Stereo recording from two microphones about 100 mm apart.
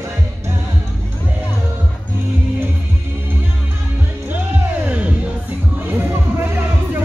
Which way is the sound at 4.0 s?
20° right (ahead or behind).